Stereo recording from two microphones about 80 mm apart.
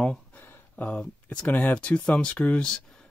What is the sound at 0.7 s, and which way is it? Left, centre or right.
Speech, centre.